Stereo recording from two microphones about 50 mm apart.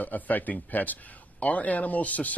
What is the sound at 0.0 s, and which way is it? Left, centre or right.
A woman's voice, left.